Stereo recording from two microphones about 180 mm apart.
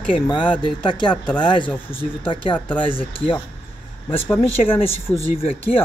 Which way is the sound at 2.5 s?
10° left (ahead or behind).